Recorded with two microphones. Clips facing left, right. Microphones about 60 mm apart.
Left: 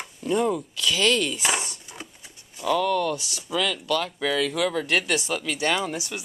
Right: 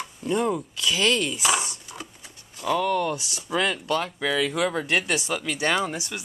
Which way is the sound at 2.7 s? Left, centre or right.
Centre.